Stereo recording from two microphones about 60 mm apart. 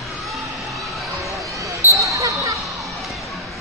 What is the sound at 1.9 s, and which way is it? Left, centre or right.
Basketball bounce, right.